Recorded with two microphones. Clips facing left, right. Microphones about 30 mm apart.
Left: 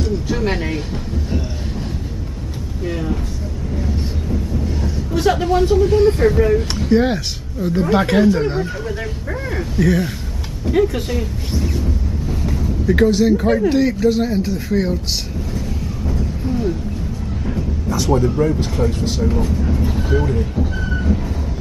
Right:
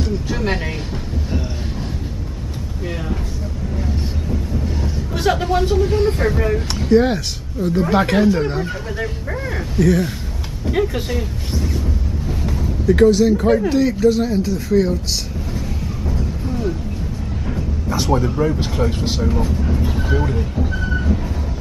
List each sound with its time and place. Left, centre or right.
0.0 s speech: centre
2.8 s speech: centre
3.7 s a sound: centre
6.7 s speech: centre
16.1 s a sound: centre
17.8 s speech: right
18.1 s speech: centre
18.6 s speech: centre
19.2 s speech: centre